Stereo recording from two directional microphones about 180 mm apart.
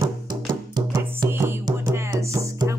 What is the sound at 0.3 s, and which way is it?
Music, 25° right (ahead or behind).